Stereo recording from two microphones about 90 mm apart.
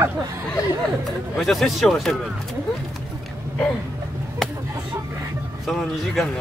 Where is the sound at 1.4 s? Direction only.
Centre (ahead or behind).